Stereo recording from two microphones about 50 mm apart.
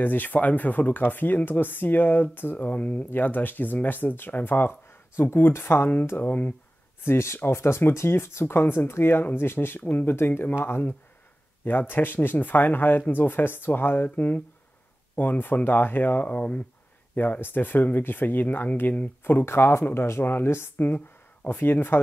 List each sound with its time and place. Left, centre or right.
0.0 s speech: left
3.1 s speech: left
7.1 s speech: left
9.8 s speech: left
19.4 s speech: left
20.7 s speech: left